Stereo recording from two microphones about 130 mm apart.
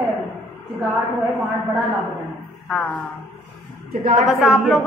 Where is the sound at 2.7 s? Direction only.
15° left (ahead or behind).